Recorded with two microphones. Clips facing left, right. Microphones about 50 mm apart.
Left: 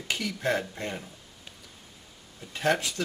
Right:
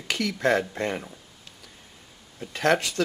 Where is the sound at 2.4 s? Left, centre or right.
Right.